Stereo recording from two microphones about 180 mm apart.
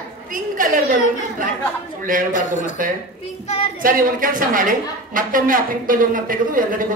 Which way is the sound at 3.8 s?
50° right (ahead or behind).